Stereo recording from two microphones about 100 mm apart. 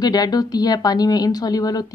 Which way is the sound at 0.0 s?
40° left (ahead or behind).